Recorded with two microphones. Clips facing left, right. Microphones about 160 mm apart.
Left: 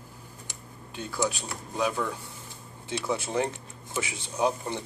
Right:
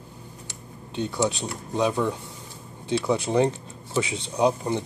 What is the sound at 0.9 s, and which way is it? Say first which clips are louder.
Speech: right 5 dB; 25° right (ahead or behind).